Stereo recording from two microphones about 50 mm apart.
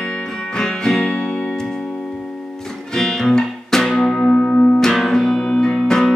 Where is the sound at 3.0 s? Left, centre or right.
Centre.